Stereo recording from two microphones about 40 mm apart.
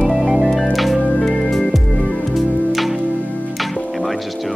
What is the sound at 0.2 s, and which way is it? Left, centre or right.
Music, right.